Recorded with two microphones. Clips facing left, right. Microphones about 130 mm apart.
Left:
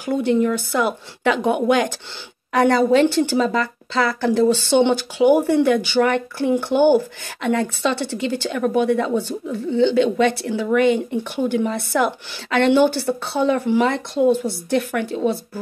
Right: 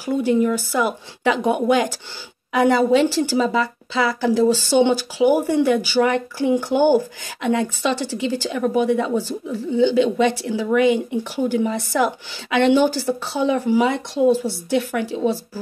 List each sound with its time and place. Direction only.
0.0 s a woman's voice: 10° right (ahead or behind)
7.9 s a woman's voice: 65° left (ahead or behind)
8.5 s speech: 15° right (ahead or behind)